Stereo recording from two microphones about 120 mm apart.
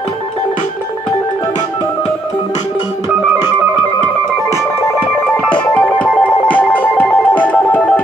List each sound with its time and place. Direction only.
4.5 s music: 20° left (ahead or behind)
5.5 s music: 10° left (ahead or behind)